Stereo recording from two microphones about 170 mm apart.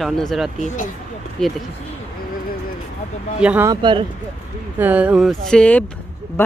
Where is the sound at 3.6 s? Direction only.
25° right (ahead or behind).